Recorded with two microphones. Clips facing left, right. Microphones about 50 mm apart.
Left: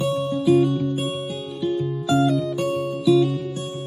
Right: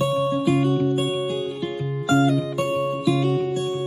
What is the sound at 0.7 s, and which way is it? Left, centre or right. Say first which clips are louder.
Music: right 3 dB; centre.